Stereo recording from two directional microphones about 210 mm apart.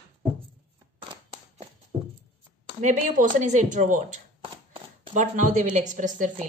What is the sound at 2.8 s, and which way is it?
Speech, 35° right (ahead or behind).